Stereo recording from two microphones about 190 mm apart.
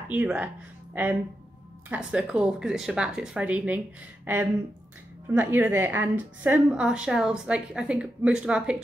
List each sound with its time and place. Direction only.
0.1 s a woman's voice: 10° right (ahead or behind)